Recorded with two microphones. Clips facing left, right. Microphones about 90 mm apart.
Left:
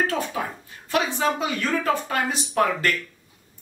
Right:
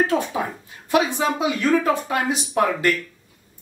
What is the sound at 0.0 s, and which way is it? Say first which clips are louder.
Speech: right 4 dB; 20° right (ahead or behind).